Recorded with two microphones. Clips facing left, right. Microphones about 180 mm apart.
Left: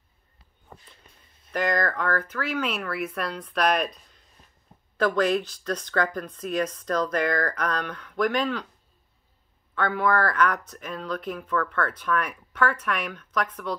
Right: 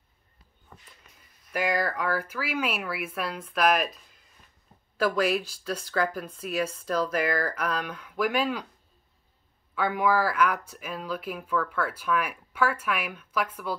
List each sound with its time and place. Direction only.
0.7 s a sound: 35° left (ahead or behind)
1.5 s speech: 10° right (ahead or behind)
9.8 s speech: 10° right (ahead or behind)